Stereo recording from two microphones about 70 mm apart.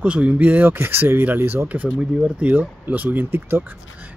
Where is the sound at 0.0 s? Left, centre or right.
Centre.